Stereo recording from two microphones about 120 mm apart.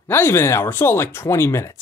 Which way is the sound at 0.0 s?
20° left (ahead or behind).